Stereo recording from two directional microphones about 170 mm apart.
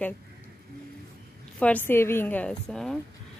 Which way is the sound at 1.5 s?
10° left (ahead or behind).